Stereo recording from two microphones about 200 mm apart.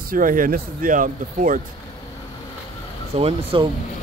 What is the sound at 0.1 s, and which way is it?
Speech, 45° right (ahead or behind).